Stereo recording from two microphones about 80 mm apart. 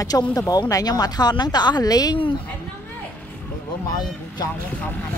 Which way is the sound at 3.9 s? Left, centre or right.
Left.